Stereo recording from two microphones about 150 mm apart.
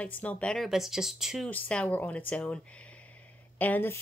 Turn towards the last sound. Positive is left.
turn(degrees=10)  # may be behind; listen again after turning